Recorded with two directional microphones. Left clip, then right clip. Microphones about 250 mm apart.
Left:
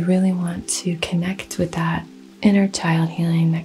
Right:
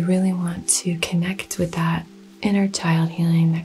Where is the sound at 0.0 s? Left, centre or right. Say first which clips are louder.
Left 2 dB; left.